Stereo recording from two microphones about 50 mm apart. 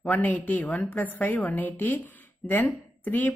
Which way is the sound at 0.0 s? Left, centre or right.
Left.